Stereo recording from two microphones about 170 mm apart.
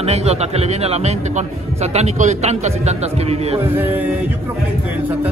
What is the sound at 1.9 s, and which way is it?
A man's voice, 40° right (ahead or behind).